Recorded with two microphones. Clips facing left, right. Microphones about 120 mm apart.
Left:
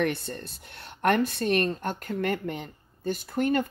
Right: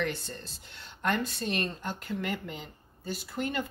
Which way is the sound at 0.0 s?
60° left (ahead or behind).